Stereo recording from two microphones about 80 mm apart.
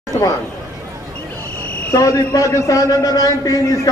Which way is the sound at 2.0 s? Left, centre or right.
Left.